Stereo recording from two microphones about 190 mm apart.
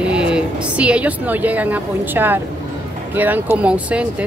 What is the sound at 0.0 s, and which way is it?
A woman's voice, 5° right (ahead or behind).